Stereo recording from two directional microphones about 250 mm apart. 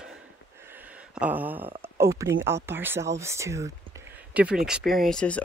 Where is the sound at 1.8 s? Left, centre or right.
Centre.